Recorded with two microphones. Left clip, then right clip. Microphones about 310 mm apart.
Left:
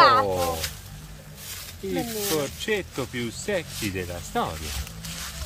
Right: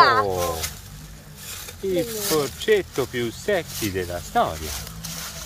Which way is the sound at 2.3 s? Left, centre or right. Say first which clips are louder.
Right 8 dB; centre.